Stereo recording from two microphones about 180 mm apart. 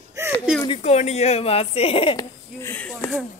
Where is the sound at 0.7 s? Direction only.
40° left (ahead or behind).